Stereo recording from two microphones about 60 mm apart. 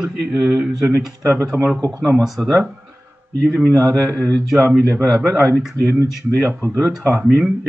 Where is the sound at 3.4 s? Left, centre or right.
Centre.